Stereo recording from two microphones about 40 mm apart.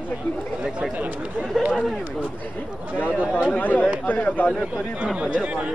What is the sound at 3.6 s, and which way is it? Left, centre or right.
Speech, left.